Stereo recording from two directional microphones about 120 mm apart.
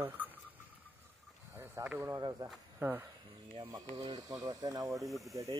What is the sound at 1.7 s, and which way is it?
Speech, 15° right (ahead or behind).